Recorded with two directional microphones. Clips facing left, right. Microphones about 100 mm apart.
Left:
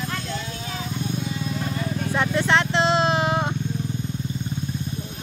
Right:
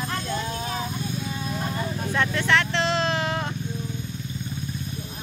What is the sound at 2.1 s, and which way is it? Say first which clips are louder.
Vehicle: left 2 dB; 20° left (ahead or behind).